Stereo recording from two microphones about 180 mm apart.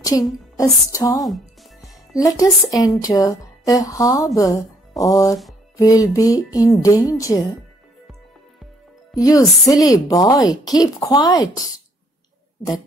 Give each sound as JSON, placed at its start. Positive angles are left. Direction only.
{"t": 0.0, "sound": "a woman's voice", "side_deg": 20}
{"t": 9.1, "sound": "speech", "side_deg": 20}